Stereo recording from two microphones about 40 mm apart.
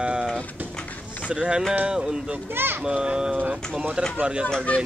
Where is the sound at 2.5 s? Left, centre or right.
Right.